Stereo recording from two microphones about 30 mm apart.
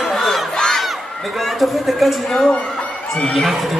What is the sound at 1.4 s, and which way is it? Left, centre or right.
Speech, centre.